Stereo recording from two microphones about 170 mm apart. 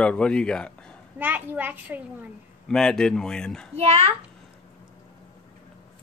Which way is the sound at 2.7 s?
5° left (ahead or behind).